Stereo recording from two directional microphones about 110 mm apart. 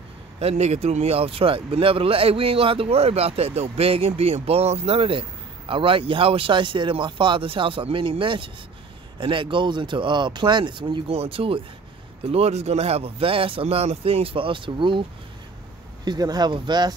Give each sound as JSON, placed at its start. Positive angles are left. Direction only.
{"t": 0.4, "sound": "speech", "side_deg": -75}
{"t": 11.1, "sound": "speech", "side_deg": -60}
{"t": 12.3, "sound": "speech", "side_deg": -70}
{"t": 16.1, "sound": "speech", "side_deg": -40}